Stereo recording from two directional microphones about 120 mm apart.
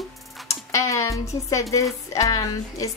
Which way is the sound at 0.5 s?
25° left (ahead or behind).